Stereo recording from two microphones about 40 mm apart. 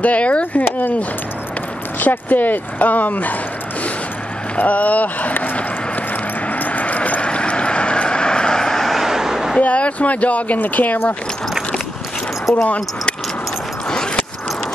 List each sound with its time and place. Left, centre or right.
0.0 s speech: left
2.0 s speech: left
4.6 s speech: left
6.5 s vehicle: left; by 8.8 s centre
8.8 s vehicle: centre
9.6 s speech: left
12.6 s speech: left
13.8 s a sound: centre